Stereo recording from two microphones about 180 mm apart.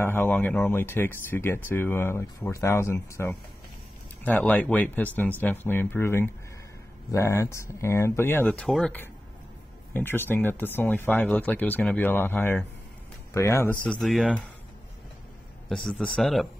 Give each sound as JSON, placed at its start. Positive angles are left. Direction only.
{"t": 0.0, "sound": "speech", "side_deg": 10}
{"t": 15.7, "sound": "speech", "side_deg": 5}